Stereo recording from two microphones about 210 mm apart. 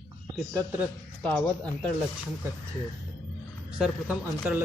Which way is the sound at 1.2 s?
5° left (ahead or behind).